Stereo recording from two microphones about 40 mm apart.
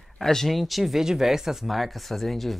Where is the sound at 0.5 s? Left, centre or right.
Centre.